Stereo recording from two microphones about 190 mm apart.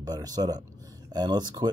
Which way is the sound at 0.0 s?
20° right (ahead or behind).